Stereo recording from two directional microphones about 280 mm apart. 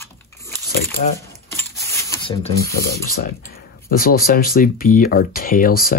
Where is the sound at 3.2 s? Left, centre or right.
Left.